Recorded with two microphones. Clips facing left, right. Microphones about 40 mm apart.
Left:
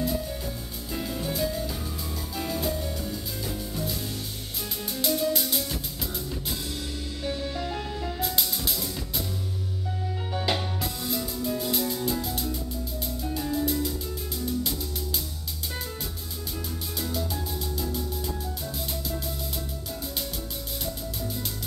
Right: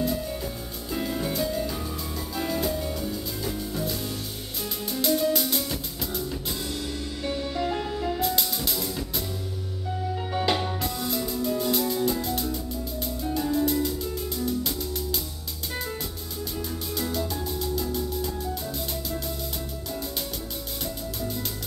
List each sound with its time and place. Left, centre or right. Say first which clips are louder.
0.9 s music: right 3 dB; centre
4.9 s music: right 3 dB; centre
7.2 s music: right 3 dB; centre
10.3 s music: right 3 dB; centre
17.5 s music: right 3 dB; centre